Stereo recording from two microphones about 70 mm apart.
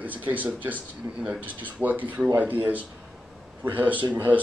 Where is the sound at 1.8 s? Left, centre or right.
Right.